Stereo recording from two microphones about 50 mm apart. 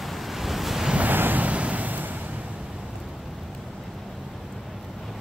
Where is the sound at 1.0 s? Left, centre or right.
Right.